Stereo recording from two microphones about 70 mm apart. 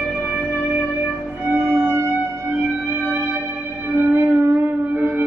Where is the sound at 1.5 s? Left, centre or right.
Right.